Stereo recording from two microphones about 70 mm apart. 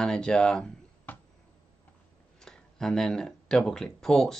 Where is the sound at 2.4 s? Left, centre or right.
Centre.